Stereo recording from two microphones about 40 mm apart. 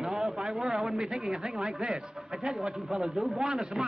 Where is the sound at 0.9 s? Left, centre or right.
Centre.